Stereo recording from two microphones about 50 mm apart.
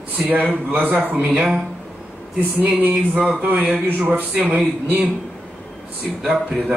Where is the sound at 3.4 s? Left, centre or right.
Right.